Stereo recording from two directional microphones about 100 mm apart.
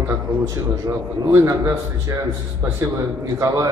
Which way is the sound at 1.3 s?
30° right (ahead or behind).